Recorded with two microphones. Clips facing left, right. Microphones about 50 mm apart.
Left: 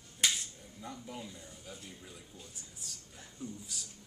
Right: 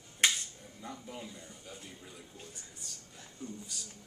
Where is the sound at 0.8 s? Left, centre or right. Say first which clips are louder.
Even; centre.